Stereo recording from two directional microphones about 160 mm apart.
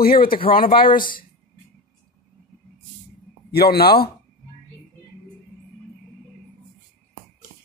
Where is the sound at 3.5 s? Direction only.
80° left.